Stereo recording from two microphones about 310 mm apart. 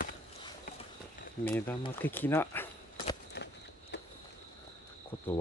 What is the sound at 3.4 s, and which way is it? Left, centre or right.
Walk, left.